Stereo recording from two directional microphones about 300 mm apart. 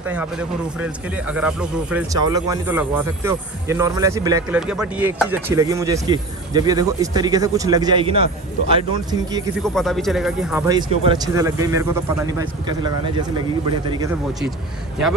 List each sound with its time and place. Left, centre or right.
0.0 s speech: centre
9.6 s speech: centre